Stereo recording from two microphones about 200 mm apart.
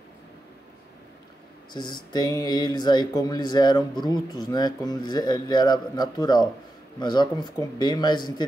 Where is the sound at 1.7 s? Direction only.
20° left (ahead or behind).